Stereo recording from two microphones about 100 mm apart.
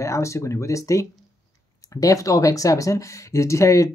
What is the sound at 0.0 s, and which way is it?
Speech, 30° left (ahead or behind).